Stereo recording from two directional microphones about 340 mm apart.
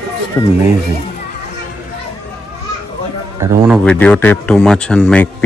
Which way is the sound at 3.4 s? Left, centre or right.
Centre.